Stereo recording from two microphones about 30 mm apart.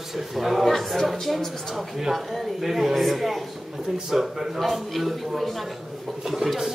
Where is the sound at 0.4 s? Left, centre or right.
Centre.